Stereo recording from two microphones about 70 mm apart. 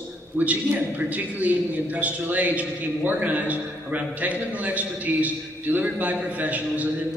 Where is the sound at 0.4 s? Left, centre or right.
Right.